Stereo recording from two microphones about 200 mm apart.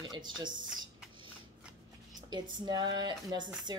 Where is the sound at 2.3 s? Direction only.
20° right (ahead or behind).